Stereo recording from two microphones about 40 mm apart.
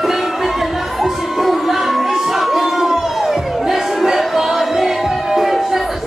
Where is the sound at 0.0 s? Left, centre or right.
Centre.